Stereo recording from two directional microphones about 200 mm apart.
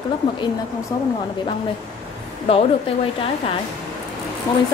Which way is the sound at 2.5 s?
30° left (ahead or behind).